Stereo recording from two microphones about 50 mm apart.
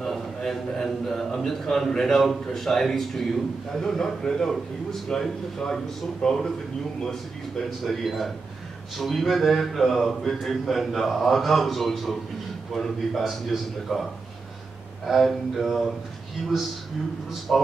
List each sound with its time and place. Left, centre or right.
0.0 s a man's voice: centre
15.0 s speech: centre
17.5 s speech: centre